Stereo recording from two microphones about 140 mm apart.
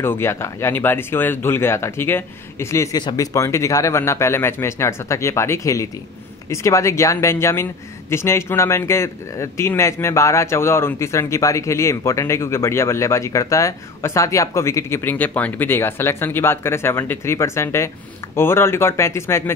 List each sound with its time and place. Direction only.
0.0 s speech: 15° left (ahead or behind)
3.0 s speech: 35° left (ahead or behind)
3.3 s speech: 20° left (ahead or behind)